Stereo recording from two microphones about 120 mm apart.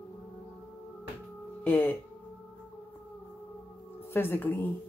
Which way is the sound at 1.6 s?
15° left (ahead or behind).